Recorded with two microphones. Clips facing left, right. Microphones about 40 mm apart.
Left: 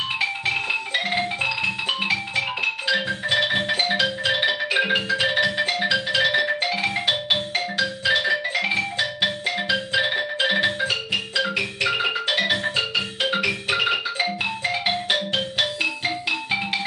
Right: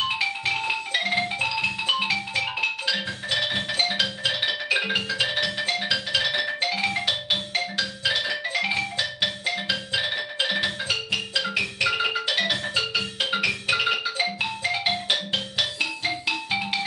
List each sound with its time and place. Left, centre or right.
0.2 s music: centre
2.9 s music: left